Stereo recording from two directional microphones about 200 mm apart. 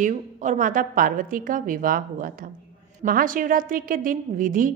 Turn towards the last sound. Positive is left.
turn(degrees=-45)  # may be behind; listen again after turning